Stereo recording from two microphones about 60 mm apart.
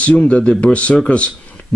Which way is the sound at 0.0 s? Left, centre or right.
Left.